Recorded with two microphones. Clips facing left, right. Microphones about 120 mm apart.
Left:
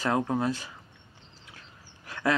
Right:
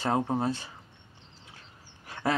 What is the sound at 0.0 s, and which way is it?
Speech, 30° right (ahead or behind).